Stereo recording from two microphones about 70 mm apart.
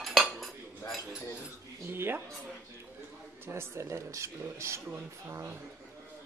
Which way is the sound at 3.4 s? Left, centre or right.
Right.